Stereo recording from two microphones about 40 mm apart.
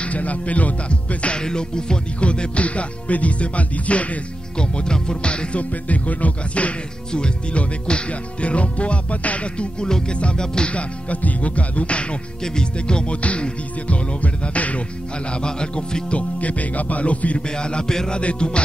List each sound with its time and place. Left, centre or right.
0.0 s music: left
4.6 s music: left
7.1 s music: left
9.8 s music: centre
10.1 s music: left
10.4 s music: centre
10.7 s music: left
15.3 s music: left
17.5 s music: left